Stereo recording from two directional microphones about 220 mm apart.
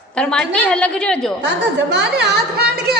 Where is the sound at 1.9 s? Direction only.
50° right (ahead or behind).